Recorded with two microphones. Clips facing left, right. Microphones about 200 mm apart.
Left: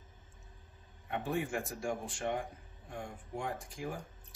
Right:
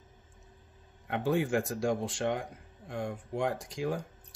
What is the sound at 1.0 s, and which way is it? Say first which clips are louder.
Speech: right 6 dB; 90° right.